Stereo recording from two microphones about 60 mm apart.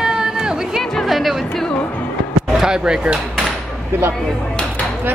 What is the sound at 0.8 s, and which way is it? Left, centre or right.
Speech, centre.